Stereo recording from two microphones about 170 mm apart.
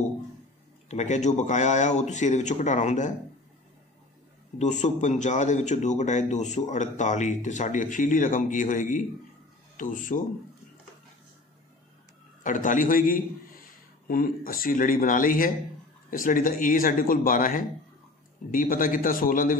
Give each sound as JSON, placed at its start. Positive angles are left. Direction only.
{"t": 0.8, "sound": "a man's voice", "side_deg": 45}
{"t": 4.6, "sound": "a man's voice", "side_deg": 45}
{"t": 12.4, "sound": "a man's voice", "side_deg": 50}